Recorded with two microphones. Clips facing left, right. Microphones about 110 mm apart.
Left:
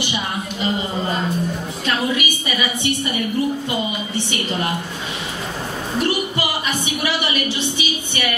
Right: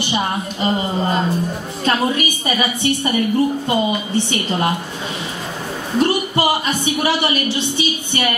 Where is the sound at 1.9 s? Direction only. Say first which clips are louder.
Right 3 dB; 40° right (ahead or behind).